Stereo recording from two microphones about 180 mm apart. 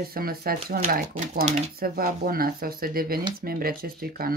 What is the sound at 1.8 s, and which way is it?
Speech, 55° right (ahead or behind).